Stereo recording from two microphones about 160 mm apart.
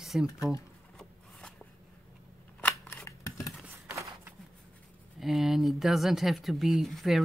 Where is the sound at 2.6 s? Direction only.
15° left (ahead or behind).